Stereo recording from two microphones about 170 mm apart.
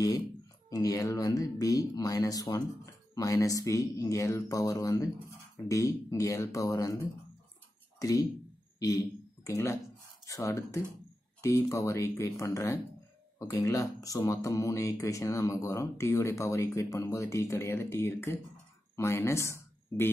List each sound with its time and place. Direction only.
0.7 s speech: 20° left (ahead or behind)
8.0 s speech: 20° left (ahead or behind)
8.7 s a sound: 20° left (ahead or behind)
10.2 s speech: 20° left (ahead or behind)